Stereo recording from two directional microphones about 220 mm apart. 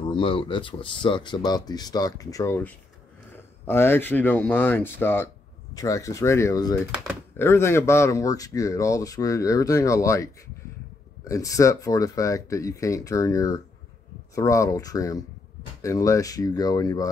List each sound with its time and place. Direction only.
0.0 s speech: 25° left (ahead or behind)